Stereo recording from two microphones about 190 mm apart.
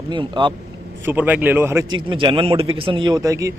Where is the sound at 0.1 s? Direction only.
25° right (ahead or behind).